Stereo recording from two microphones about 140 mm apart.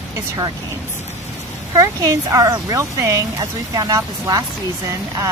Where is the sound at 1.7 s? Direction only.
25° right (ahead or behind).